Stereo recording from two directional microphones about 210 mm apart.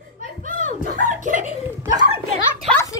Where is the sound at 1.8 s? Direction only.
20° right (ahead or behind).